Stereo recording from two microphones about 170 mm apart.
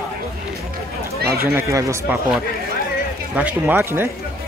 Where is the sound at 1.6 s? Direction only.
20° right (ahead or behind).